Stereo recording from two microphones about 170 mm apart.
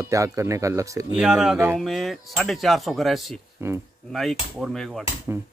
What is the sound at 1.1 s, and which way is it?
Speech, 5° right (ahead or behind).